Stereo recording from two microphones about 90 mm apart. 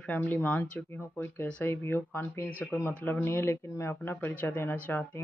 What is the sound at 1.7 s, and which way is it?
Speech, 25° left (ahead or behind).